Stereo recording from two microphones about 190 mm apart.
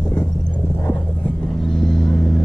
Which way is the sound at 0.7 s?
10° left (ahead or behind).